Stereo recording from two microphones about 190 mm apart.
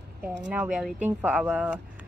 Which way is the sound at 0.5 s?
5° right (ahead or behind).